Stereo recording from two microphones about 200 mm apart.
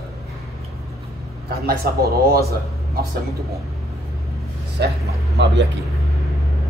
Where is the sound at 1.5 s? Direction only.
50° right (ahead or behind).